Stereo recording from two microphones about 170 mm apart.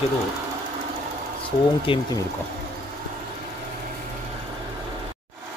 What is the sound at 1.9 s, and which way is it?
Speech, 30° left (ahead or behind).